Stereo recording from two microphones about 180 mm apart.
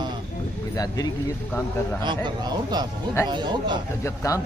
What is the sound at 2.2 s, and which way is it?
Speech, 20° right (ahead or behind).